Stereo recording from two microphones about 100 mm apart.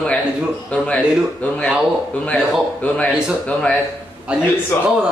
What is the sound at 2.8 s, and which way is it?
A man's voice, 15° left (ahead or behind).